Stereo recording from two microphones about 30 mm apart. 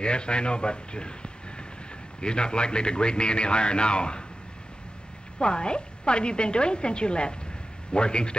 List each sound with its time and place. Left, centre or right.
0.0 s a man's voice: left
5.4 s a man's voice: left